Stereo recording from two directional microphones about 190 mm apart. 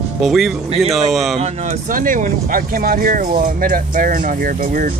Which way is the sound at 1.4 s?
40° right (ahead or behind).